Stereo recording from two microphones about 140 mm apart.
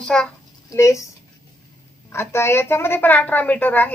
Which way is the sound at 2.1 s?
20° left (ahead or behind).